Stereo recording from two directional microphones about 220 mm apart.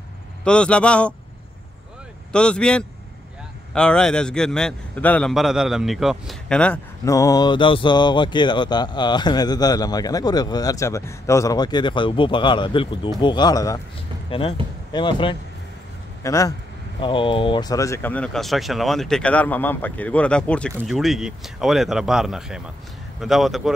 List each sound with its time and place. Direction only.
0.4 s speech: 5° left (ahead or behind)
2.3 s a man's voice: 5° left (ahead or behind)